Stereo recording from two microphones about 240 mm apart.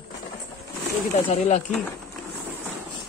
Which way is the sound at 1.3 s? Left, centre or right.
Left.